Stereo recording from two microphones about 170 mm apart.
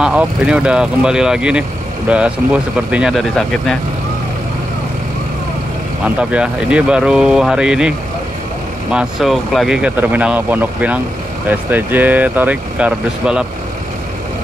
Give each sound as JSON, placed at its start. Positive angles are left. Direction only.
{"t": 0.0, "sound": "speech", "side_deg": -5}
{"t": 6.0, "sound": "speech", "side_deg": -5}
{"t": 8.9, "sound": "speech", "side_deg": 0}